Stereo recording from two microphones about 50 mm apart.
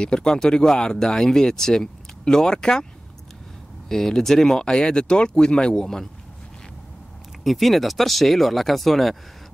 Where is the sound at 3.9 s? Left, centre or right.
Centre.